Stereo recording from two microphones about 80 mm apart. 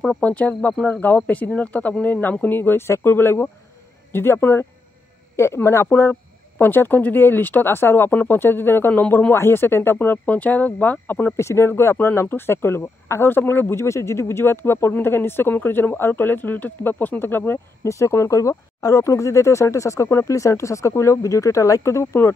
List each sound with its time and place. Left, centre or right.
0.2 s speech: centre
11.3 s speech: left
17.8 s speech: left